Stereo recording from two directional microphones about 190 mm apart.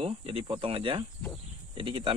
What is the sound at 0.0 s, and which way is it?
Cricket, 30° right (ahead or behind).